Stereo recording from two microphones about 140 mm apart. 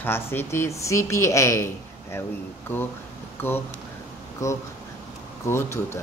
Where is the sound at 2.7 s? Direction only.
15° left (ahead or behind).